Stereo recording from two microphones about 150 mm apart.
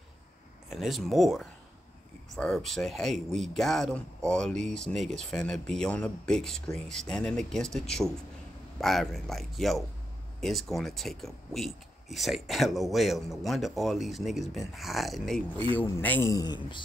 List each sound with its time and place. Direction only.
0.7 s speech: centre (ahead or behind)
15.7 s a man's voice: 10° left (ahead or behind); by 16.8 s 30° left (ahead or behind)